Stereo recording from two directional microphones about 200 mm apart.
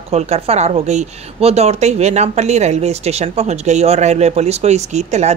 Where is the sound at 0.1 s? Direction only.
30° right (ahead or behind).